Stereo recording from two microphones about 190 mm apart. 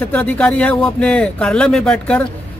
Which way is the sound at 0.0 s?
10° left (ahead or behind).